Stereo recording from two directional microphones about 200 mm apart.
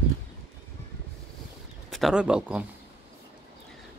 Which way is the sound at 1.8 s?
Centre (ahead or behind).